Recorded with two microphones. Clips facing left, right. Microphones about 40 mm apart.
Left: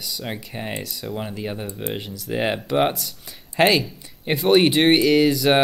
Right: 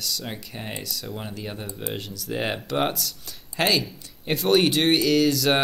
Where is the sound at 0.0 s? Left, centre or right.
Centre.